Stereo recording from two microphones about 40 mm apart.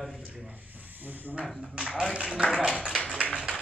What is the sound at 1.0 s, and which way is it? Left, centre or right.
Speech, right.